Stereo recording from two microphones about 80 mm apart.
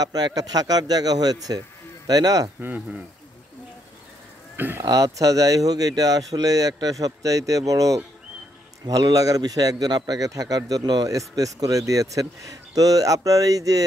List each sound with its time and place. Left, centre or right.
0.0 s speech: right
4.6 s speech: right
4.8 s a man's voice: right
11.1 s a man's voice: right